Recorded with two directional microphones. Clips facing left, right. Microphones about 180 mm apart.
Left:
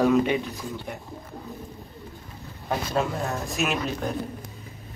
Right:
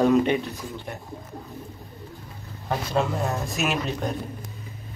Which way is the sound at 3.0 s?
Centre (ahead or behind).